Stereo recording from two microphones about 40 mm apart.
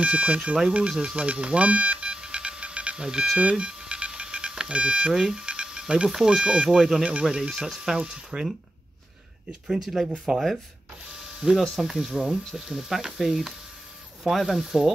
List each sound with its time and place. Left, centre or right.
0.0 s speech: right
1.1 s telephone dialing: right
3.0 s speech: centre
3.3 s beep: right
4.5 s speech: right
5.1 s a sound: centre
6.0 s speech: centre
7.0 s speech: right
7.2 s speech: centre
8.0 s speech: right
9.7 s speech: centre
11.5 s speech: centre